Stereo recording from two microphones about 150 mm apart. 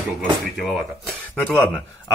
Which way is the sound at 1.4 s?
5° left (ahead or behind).